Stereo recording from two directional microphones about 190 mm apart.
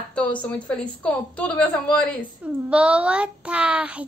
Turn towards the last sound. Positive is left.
turn(degrees=-5)  # may be behind; listen again after turning